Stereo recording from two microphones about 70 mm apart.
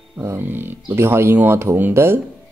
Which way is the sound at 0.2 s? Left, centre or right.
Right.